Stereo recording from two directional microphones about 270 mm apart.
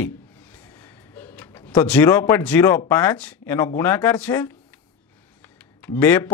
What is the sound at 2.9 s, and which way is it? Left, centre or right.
Speech, centre.